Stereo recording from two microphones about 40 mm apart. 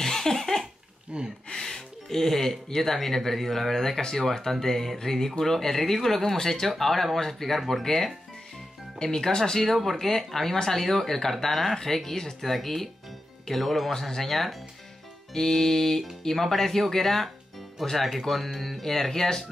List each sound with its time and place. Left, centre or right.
0.0 s a sound: centre
1.1 s speech: right
1.5 s speech: centre
15.3 s speech: centre